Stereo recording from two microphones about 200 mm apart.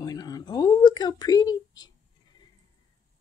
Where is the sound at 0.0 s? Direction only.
20° left (ahead or behind).